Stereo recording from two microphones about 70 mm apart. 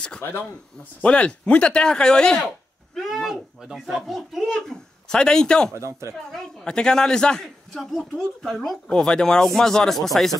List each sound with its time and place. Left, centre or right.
1.0 s speech: centre
5.8 s speech: right
6.3 s speech: centre